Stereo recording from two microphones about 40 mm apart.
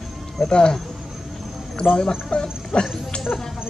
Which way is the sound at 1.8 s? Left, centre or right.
Centre.